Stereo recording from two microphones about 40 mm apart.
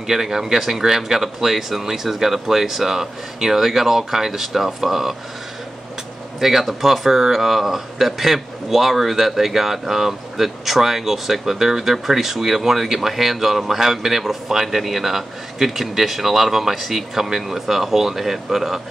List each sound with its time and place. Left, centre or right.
0.0 s speech: centre
6.4 s speech: centre